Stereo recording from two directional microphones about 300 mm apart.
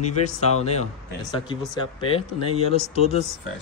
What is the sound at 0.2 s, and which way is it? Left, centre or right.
Speech, left.